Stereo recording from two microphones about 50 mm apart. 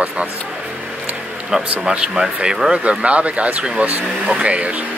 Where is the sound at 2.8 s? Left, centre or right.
Right.